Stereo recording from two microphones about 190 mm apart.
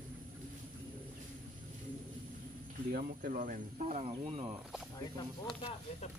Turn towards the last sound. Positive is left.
turn(degrees=-30)  # may be behind; listen again after turning